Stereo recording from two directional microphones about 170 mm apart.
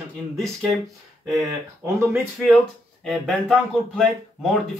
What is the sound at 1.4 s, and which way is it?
Speech, 15° right (ahead or behind).